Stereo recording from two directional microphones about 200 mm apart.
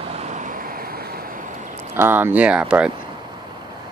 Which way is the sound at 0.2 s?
40° right (ahead or behind).